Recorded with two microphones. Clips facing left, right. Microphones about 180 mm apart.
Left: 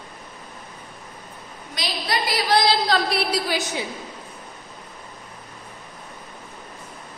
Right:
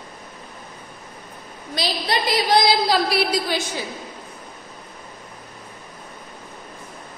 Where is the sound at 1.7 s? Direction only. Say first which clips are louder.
Right 3 dB; 25° right (ahead or behind).